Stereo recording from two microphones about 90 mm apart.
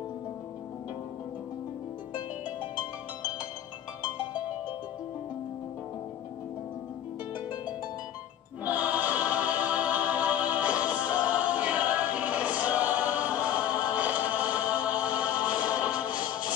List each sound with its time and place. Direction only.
7.3 s harp: 60° left (ahead or behind)
8.6 s choir: 15° right (ahead or behind)
16.1 s music: 55° left (ahead or behind)